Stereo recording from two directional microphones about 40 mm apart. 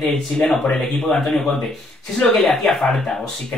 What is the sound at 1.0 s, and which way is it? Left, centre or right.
Speech, centre.